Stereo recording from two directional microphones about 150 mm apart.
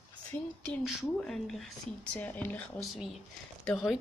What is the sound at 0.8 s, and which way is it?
Speech, centre (ahead or behind).